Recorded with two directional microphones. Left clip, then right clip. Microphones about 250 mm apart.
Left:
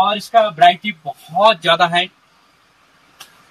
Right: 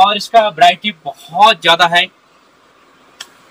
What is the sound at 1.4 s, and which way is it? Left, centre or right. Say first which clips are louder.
Speech: right 4 dB; centre.